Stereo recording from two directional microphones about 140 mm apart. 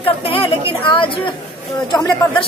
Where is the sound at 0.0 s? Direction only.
40° left (ahead or behind).